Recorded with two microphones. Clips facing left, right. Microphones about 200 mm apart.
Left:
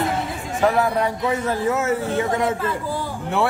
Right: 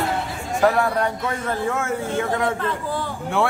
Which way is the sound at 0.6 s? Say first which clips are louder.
Even; 5° left (ahead or behind).